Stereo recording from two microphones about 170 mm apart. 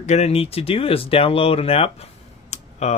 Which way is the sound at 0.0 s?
40° left (ahead or behind).